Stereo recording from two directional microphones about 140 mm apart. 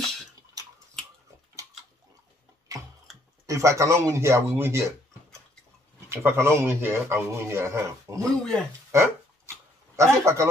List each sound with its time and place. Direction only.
3.4 s speech: 20° right (ahead or behind)
6.0 s speech: 20° right (ahead or behind)
8.3 s speech: 5° left (ahead or behind)
8.9 s dog: 20° right (ahead or behind)
10.2 s speech: 20° right (ahead or behind)